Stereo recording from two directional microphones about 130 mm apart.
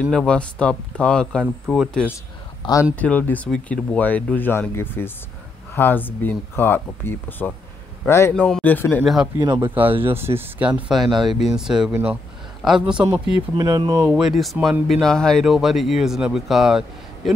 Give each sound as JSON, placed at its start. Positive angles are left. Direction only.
{"t": 0.0, "sound": "speech", "side_deg": 5}
{"t": 2.6, "sound": "speech", "side_deg": 40}
{"t": 3.0, "sound": "a man's voice", "side_deg": 10}
{"t": 8.4, "sound": "speech", "side_deg": 10}
{"t": 9.0, "sound": "speech", "side_deg": -5}
{"t": 9.4, "sound": "speech", "side_deg": -30}
{"t": 10.0, "sound": "speech", "side_deg": -20}
{"t": 10.9, "sound": "speech", "side_deg": 0}
{"t": 13.6, "sound": "speech", "side_deg": -30}
{"t": 14.0, "sound": "speech", "side_deg": -5}